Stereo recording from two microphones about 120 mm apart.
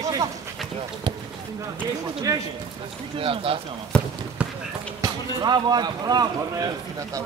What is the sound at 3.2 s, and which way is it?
Speech, 50° right (ahead or behind).